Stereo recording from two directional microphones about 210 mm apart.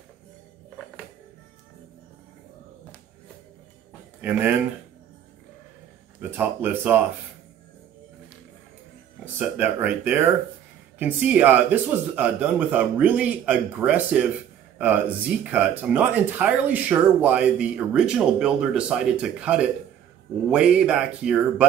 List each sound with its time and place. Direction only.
4.2 s speech: 10° right (ahead or behind)
6.3 s speech: 10° right (ahead or behind)
9.2 s speech: 10° right (ahead or behind)